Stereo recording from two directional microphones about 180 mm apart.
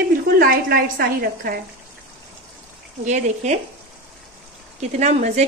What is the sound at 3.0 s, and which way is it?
Speech, 40° right (ahead or behind).